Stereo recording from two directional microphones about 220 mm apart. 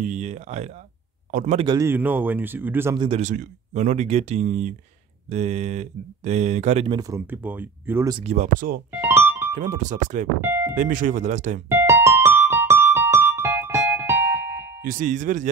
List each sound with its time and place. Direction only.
0.0 s speech: 35° right (ahead or behind)
1.7 s speech: 10° right (ahead or behind)
3.1 s speech: 30° right (ahead or behind); by 8.2 s 10° right (ahead or behind)
8.2 s speech: 30° right (ahead or behind)
9.0 s music: 10° right (ahead or behind)
9.5 s speech: 35° right (ahead or behind)
10.4 s a sound: 10° right (ahead or behind)
10.7 s speech: 35° right (ahead or behind)
11.7 s keyboard: 10° right (ahead or behind)
14.8 s speech: 40° right (ahead or behind)